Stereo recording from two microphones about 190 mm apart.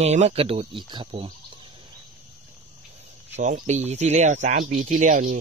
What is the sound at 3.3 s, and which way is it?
Speech, 40° right (ahead or behind).